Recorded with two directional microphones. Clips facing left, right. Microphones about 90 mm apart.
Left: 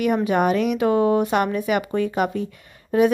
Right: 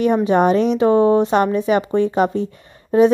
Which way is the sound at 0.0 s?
30° right (ahead or behind).